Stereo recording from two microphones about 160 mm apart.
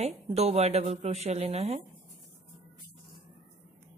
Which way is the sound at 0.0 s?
40° right (ahead or behind).